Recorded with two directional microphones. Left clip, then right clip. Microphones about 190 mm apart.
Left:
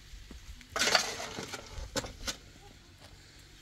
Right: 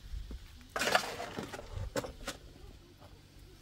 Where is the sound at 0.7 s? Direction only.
50° left (ahead or behind).